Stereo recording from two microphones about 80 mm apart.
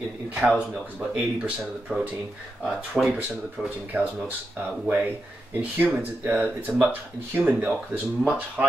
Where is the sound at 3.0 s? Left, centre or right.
Centre.